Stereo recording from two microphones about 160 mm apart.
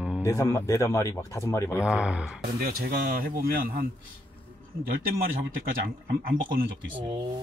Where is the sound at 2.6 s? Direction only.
70° right (ahead or behind).